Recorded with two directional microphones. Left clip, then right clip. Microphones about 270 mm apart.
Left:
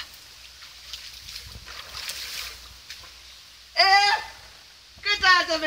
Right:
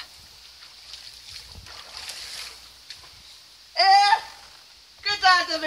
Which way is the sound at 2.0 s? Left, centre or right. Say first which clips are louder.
Left 3 dB; centre.